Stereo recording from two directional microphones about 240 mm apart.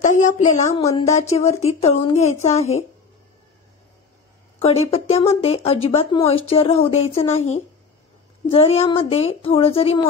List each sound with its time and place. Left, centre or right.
0.4 s speech: left
4.6 s speech: left